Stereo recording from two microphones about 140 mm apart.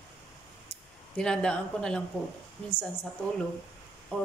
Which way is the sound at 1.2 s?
5° left (ahead or behind).